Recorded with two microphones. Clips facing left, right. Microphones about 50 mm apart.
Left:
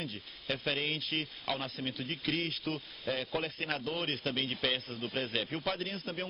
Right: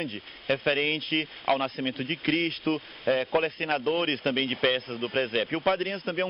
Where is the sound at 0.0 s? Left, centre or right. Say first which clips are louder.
Right 7 dB; right.